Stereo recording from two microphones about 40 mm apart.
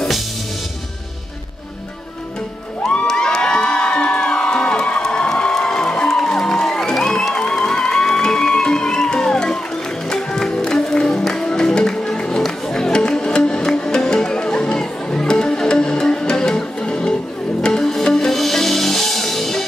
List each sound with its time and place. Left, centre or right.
3.1 s music: centre